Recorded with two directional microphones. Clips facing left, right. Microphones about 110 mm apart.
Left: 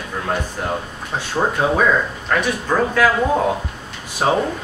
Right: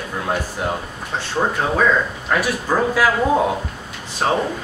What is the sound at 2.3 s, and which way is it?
Speech, 5° right (ahead or behind).